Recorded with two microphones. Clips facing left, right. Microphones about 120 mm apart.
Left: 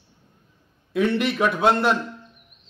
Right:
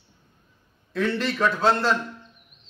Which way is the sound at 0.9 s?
15° left (ahead or behind).